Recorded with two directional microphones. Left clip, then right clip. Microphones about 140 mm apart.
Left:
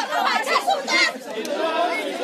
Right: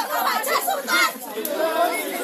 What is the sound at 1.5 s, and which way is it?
Chatter, 40° right (ahead or behind).